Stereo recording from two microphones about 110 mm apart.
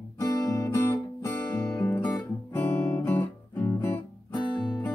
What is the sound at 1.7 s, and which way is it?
Guitar, 20° left (ahead or behind).